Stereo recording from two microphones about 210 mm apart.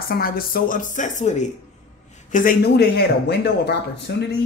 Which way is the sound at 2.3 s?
45° left (ahead or behind).